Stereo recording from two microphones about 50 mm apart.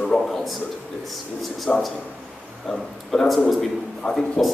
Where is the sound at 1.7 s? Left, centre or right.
Centre.